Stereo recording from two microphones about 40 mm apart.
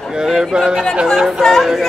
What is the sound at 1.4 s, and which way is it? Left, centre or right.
Music, centre.